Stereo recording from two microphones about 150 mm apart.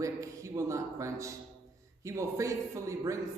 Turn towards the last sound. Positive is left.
turn(degrees=-20)  # may be behind; listen again after turning